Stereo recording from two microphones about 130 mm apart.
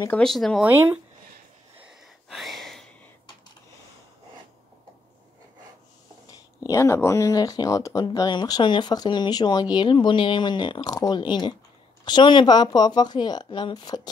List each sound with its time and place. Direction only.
0.2 s speech: 5° left (ahead or behind)
0.7 s speech: 15° right (ahead or behind)
1.8 s a sound: centre (ahead or behind)
6.2 s speech: 25° left (ahead or behind)